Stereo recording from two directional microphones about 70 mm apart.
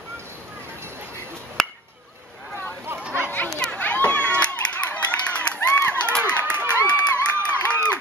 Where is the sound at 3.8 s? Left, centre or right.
Left.